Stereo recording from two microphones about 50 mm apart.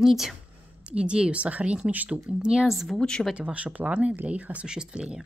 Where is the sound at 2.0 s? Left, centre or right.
Centre.